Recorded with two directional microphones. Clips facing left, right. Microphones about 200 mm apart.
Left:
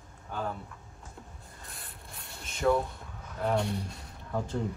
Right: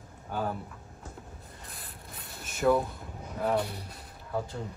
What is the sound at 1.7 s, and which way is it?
Rub, centre (ahead or behind).